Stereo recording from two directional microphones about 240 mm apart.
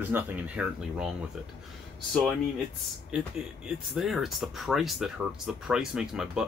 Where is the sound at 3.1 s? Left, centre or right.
Centre.